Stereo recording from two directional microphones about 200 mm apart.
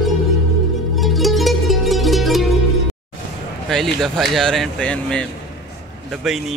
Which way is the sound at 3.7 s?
Centre (ahead or behind).